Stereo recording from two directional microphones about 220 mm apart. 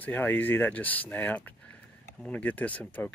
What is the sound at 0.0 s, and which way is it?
Speech, 10° left (ahead or behind).